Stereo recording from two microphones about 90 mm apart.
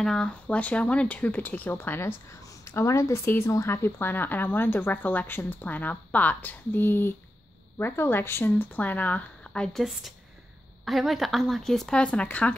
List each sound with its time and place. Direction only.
0.0 s speech: 5° left (ahead or behind); by 2.1 s 25° left (ahead or behind)
2.6 s speech: 35° left (ahead or behind); by 9.8 s 10° left (ahead or behind)
10.9 s speech: centre (ahead or behind)